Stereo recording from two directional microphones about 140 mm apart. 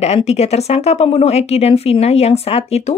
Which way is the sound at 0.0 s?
50° left (ahead or behind).